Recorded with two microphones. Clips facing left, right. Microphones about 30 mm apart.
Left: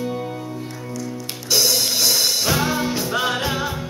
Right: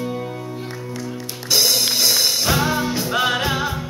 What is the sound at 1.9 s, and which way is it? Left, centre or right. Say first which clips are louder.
Music: right 1 dB; right.